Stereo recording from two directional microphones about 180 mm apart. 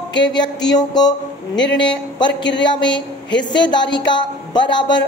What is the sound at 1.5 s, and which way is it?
Speech, 80° left.